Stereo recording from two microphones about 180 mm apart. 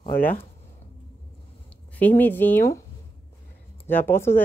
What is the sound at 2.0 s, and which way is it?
Speech, 10° left (ahead or behind).